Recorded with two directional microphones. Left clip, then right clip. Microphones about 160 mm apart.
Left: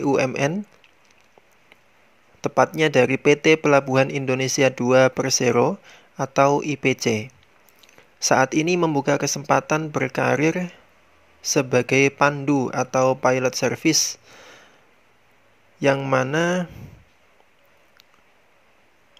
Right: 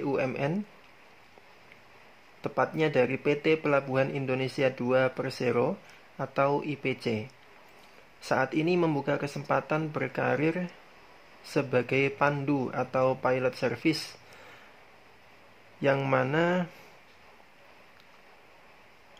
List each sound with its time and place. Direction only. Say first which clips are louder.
0.0 s speech: left 9 dB; 40° left (ahead or behind)
2.4 s speech: left 9 dB; 35° left (ahead or behind)
8.3 s speech: left 8 dB; 35° left (ahead or behind)
16.1 s speech: left 5 dB; 30° left (ahead or behind)